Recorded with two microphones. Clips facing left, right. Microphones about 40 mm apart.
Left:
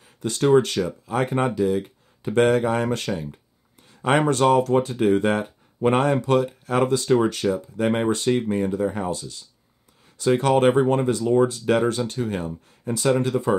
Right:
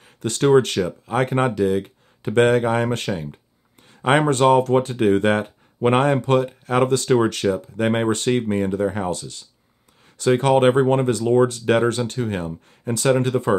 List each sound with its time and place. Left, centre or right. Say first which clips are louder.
0.0 s speech: right 2 dB; right
6.9 s speech: right 2 dB; right
10.3 s speech: right 2 dB; right
11.1 s speech: right 2 dB; right